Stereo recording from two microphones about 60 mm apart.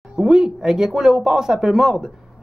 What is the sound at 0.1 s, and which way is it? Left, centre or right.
Speech, centre.